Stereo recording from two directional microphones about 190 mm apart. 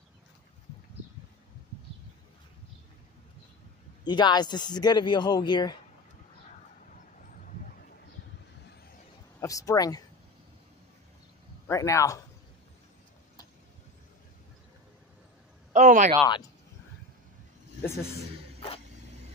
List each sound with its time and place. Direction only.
4.0 s speech: 25° left (ahead or behind)
9.4 s speech: 15° left (ahead or behind)
11.6 s a man's voice: 15° left (ahead or behind)
15.7 s speech: 40° right (ahead or behind)